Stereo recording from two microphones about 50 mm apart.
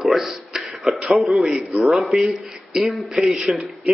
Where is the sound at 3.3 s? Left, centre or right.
Centre.